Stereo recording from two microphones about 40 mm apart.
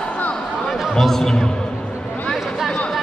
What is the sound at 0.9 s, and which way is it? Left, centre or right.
Speech, centre.